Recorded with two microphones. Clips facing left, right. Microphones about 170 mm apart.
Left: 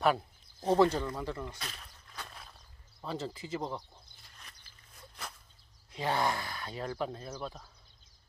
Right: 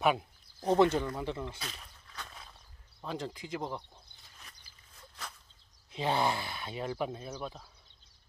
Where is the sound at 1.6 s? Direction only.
5° right (ahead or behind).